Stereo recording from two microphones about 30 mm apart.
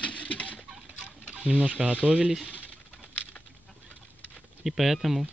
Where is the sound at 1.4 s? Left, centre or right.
Right.